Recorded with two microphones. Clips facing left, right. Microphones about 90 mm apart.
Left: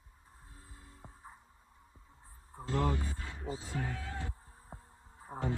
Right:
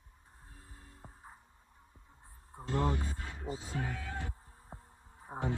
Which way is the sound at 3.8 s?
25° left (ahead or behind).